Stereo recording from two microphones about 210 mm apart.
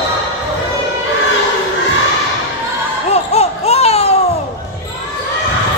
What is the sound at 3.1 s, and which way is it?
Laughter, 30° left (ahead or behind).